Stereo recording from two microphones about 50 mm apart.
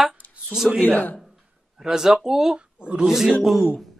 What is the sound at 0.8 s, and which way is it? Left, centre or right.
Speech, left.